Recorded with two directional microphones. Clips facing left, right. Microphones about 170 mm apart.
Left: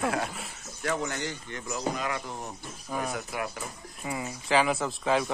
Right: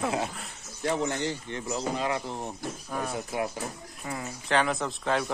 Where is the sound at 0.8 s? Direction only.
25° right (ahead or behind).